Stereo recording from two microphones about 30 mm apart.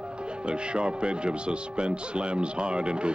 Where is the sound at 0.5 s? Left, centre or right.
Right.